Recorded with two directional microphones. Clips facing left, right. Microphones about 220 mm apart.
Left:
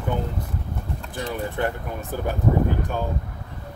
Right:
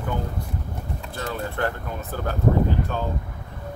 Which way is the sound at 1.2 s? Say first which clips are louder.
Left 1 dB; 15° left (ahead or behind).